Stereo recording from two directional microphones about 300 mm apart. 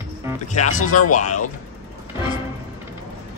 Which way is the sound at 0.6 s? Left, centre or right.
Left.